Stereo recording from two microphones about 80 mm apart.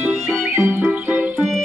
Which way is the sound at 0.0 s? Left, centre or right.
Centre.